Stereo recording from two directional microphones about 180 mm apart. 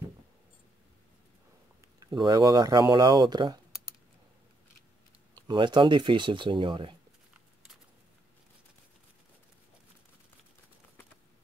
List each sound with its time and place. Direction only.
2.0 s speech: 25° right (ahead or behind)
5.3 s speech: 25° right (ahead or behind)